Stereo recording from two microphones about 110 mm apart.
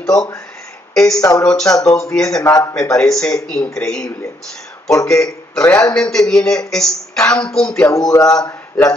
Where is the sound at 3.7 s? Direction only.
10° left (ahead or behind).